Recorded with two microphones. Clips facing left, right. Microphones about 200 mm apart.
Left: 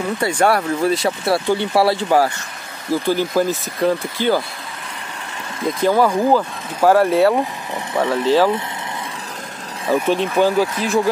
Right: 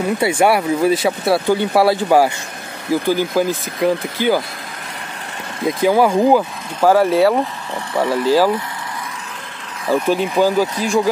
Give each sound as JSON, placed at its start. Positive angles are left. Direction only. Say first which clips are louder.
{"t": 0.2, "sound": "speech", "louder": "right 1 dB", "side_deg": -10}
{"t": 5.8, "sound": "speech", "louder": "right 2 dB", "side_deg": -10}
{"t": 6.8, "sound": "speech", "louder": "right 1 dB", "side_deg": 0}
{"t": 10.0, "sound": "speech", "louder": "right 1 dB", "side_deg": -5}